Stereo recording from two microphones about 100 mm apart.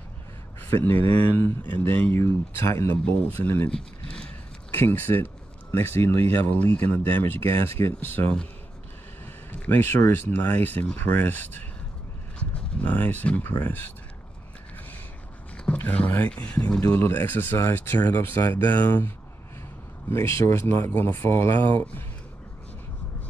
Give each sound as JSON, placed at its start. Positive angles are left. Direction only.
{"t": 0.6, "sound": "speech", "side_deg": 20}
{"t": 3.1, "sound": "speech", "side_deg": 15}
{"t": 9.7, "sound": "speech", "side_deg": 20}
{"t": 15.5, "sound": "a sound", "side_deg": 10}
{"t": 16.4, "sound": "speech", "side_deg": 15}
{"t": 18.4, "sound": "speech", "side_deg": 35}
{"t": 18.7, "sound": "speech", "side_deg": 20}
{"t": 20.1, "sound": "speech", "side_deg": 30}